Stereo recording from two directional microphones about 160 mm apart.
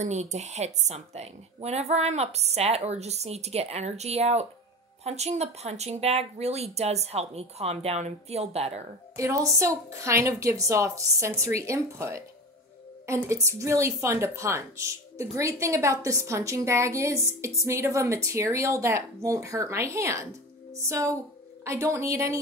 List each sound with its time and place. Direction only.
0.0 s a woman's voice: 45° right (ahead or behind)
9.1 s a woman's voice: 20° right (ahead or behind)